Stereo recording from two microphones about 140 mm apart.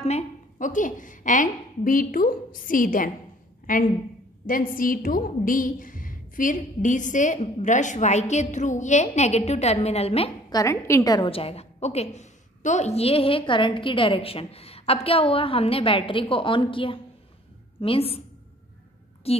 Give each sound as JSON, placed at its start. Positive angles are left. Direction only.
{"t": 0.0, "sound": "a woman's voice", "side_deg": 60}
{"t": 10.5, "sound": "a woman's voice", "side_deg": 20}
{"t": 11.1, "sound": "a woman's voice", "side_deg": 40}
{"t": 19.2, "sound": "a woman's voice", "side_deg": 45}